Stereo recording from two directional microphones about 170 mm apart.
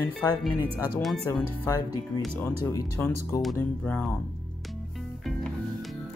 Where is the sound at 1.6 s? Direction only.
20° left (ahead or behind).